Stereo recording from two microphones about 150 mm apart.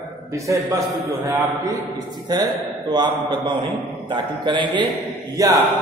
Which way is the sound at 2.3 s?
25° right (ahead or behind).